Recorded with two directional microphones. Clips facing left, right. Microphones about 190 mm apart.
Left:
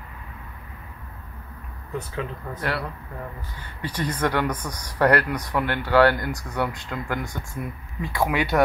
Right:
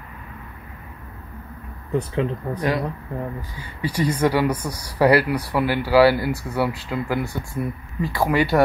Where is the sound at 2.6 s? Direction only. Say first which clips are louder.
Right 4 dB; 15° right (ahead or behind).